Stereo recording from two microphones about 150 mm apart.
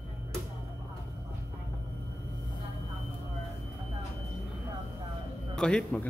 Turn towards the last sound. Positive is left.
turn(degrees=5)  # may be behind; listen again after turning